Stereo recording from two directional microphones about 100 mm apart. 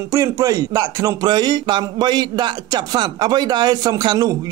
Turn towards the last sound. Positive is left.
turn(degrees=-45)  # may be behind; listen again after turning